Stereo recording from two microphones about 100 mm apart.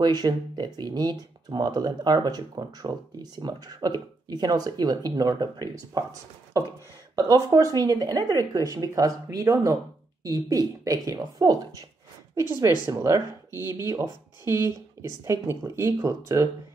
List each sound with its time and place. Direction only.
0.0 s speech: 45° right (ahead or behind)
7.2 s speech: 35° right (ahead or behind)
12.4 s speech: 30° right (ahead or behind)
14.5 s speech: 45° left (ahead or behind)
15.0 s speech: 30° right (ahead or behind)